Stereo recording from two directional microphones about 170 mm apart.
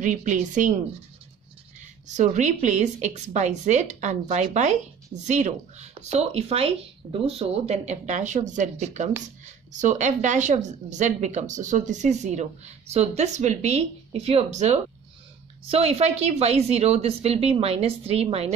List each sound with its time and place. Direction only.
0.0 s a woman's voice: 50° right (ahead or behind)
1.8 s a woman's voice: 45° right (ahead or behind)